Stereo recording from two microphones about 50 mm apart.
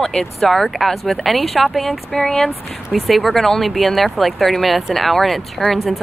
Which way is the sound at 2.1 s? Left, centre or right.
Left.